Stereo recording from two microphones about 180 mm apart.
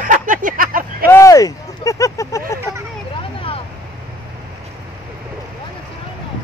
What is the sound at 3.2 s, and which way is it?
Vehicle, 30° left (ahead or behind).